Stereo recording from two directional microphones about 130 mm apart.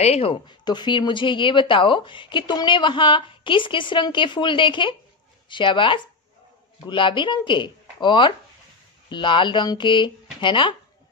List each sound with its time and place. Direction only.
0.0 s speech: 50° left (ahead or behind)